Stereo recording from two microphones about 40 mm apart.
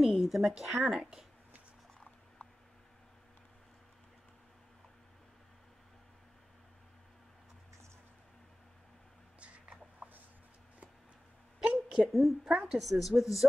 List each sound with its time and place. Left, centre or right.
0.0 s speech: centre
0.8 s a woman's voice: centre
9.4 s a sound: right
11.7 s a sound: right
12.1 s a woman's voice: centre
12.4 s a woman's voice: centre
12.8 s a woman's voice: centre